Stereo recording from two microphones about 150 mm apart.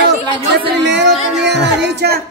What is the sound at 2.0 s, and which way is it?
Music, 90° right.